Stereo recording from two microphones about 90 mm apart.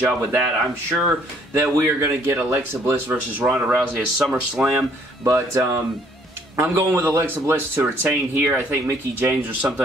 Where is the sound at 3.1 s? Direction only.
10° right (ahead or behind).